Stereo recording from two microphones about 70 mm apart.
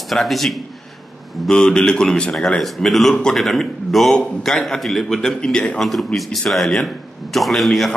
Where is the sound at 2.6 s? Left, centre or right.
Centre.